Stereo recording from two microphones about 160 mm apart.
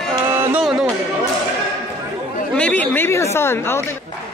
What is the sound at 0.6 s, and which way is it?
Music, 5° right (ahead or behind).